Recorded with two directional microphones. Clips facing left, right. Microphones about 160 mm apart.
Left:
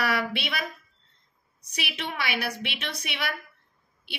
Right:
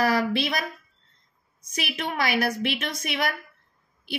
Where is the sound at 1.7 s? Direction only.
45° right (ahead or behind).